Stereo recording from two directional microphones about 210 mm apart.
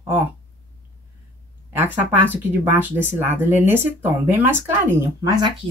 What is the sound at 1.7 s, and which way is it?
Speech, 10° right (ahead or behind).